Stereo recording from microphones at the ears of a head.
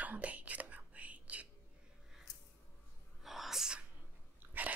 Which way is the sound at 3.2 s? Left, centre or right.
Centre.